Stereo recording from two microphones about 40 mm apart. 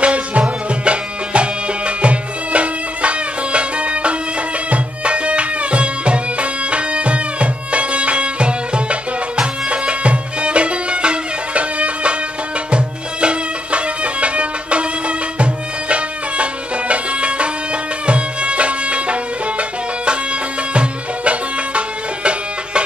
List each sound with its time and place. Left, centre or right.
0.0 s music: right
20.7 s music: right